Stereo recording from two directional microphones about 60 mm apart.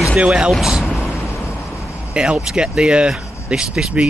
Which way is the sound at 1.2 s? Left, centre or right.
Left.